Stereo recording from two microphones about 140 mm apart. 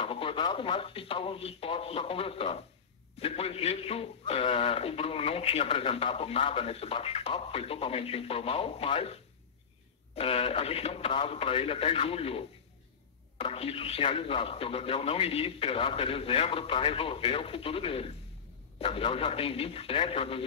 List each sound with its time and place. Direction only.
0.0 s a man's voice: 40° left (ahead or behind)